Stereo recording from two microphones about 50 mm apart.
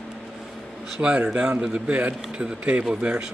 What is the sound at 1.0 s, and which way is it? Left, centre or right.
Speech, right.